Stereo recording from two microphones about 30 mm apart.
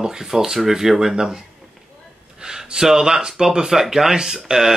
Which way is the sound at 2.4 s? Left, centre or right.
Centre.